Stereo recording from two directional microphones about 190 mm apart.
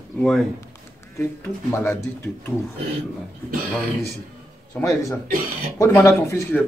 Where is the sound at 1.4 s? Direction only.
15° left (ahead or behind).